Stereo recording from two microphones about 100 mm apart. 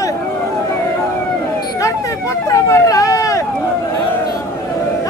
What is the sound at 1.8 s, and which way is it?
Vehicle, 30° left (ahead or behind).